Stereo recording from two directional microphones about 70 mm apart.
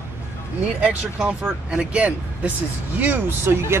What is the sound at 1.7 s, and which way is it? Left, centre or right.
Speech, centre.